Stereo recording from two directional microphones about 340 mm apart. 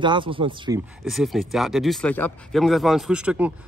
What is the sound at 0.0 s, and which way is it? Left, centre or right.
Speech, centre.